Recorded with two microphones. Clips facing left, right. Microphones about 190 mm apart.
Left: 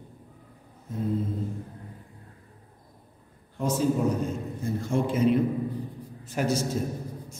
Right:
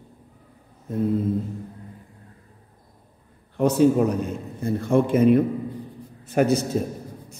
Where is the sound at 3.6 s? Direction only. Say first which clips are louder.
Right 8 dB; 65° right (ahead or behind).